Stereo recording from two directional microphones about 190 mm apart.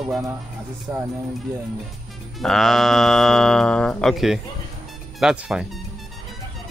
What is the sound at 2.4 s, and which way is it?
Speech, centre (ahead or behind).